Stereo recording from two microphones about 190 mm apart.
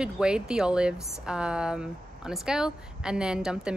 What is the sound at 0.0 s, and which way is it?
A woman's voice, 5° right (ahead or behind).